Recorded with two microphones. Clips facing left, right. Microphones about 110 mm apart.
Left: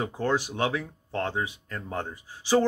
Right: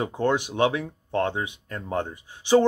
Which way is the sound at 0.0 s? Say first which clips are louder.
Right 3 dB; 20° right (ahead or behind).